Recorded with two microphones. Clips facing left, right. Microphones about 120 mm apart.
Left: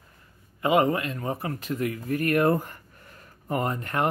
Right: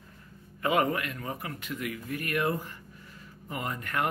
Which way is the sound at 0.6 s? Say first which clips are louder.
Left 5 dB; 20° left (ahead or behind).